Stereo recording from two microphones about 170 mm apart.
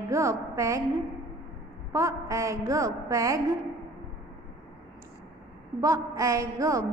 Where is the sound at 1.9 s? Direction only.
20° right (ahead or behind).